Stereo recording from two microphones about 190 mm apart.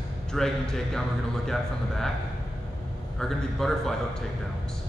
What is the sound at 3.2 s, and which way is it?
Speech, centre (ahead or behind).